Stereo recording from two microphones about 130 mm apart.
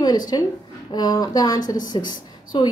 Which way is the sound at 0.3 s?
35° left (ahead or behind).